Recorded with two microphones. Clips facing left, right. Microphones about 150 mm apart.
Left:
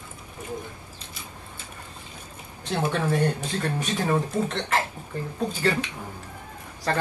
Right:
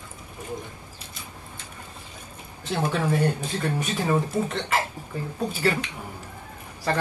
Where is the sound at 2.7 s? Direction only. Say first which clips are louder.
Even; 10° right (ahead or behind).